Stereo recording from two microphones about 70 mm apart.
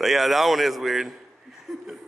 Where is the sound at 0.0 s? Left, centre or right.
Centre.